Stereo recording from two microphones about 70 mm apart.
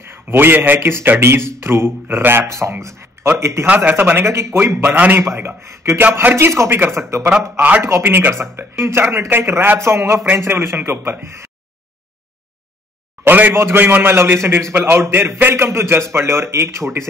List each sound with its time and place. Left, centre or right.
0.0 s a man's voice: right
3.6 s a man's voice: right
4.3 s a man's voice: right
4.8 s a man's voice: right
5.2 s a man's voice: right
8.0 s a man's voice: right
13.2 s a man's voice: right